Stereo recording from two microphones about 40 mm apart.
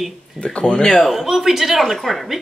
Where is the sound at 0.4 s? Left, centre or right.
Left.